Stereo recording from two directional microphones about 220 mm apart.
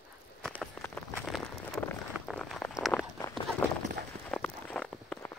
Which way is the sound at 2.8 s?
Centre (ahead or behind).